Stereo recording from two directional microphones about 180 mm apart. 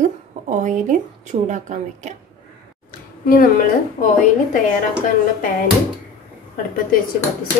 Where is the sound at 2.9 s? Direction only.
50° left (ahead or behind).